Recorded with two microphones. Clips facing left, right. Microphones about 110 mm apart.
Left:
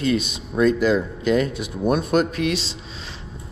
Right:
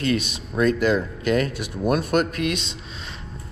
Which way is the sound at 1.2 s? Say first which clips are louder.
Left 2 dB; 50° right (ahead or behind).